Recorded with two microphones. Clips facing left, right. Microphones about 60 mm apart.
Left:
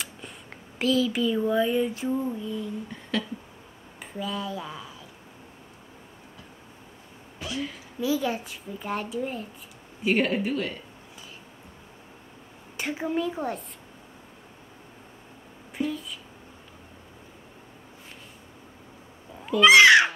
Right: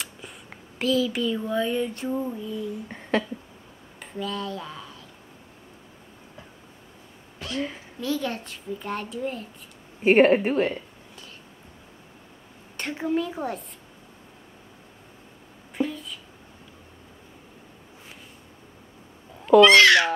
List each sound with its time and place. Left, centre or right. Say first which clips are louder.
0.0 s a child's voice: even; centre
2.9 s a sound: right 7 dB; right
4.0 s speech: right 1 dB; centre
7.3 s a sound: right 2 dB; centre
8.0 s a child's voice: left 2 dB; centre
10.0 s speech: right 7 dB; right
12.7 s a child's voice: right 2 dB; centre
19.6 s speech: left 2 dB; centre